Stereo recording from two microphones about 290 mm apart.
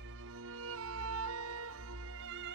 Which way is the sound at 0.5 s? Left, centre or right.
Right.